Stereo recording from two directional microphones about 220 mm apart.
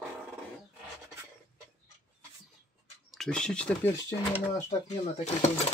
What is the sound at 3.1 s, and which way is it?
Speech, 5° left (ahead or behind).